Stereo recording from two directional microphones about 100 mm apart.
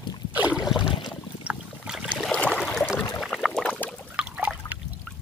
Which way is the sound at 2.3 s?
10° left (ahead or behind).